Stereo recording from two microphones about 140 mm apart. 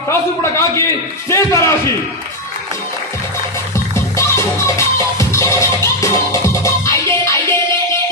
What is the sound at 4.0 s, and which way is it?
Music, 20° left (ahead or behind).